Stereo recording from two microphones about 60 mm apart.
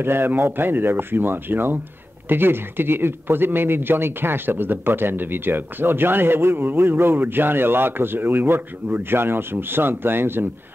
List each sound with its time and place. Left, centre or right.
0.0 s speech: right